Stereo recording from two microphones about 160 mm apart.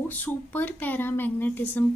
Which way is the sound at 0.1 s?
10° left (ahead or behind).